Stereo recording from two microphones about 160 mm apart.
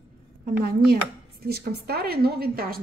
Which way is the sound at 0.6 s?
80° right.